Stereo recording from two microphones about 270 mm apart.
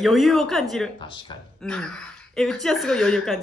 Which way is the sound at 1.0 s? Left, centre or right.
Centre.